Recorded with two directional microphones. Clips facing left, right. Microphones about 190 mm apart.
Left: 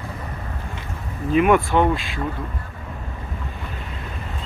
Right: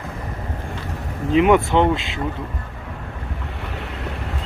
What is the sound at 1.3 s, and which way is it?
Speech, 20° right (ahead or behind).